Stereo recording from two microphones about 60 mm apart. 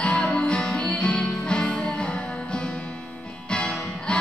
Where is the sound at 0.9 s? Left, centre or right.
Centre.